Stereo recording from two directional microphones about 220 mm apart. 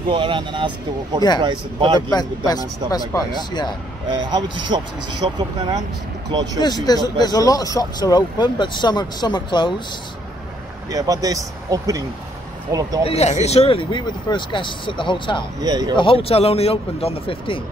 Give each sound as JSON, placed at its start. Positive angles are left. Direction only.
{"t": 0.1, "sound": "speech", "side_deg": -20}
{"t": 2.1, "sound": "speech", "side_deg": 15}
{"t": 4.3, "sound": "speech", "side_deg": -20}
{"t": 6.6, "sound": "speech", "side_deg": 20}
{"t": 10.9, "sound": "speech", "side_deg": -15}
{"t": 13.0, "sound": "speech", "side_deg": 30}
{"t": 15.6, "sound": "speech", "side_deg": -15}
{"t": 16.0, "sound": "speech", "side_deg": 25}